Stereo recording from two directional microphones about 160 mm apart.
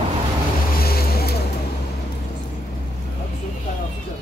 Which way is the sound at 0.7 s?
70° left (ahead or behind).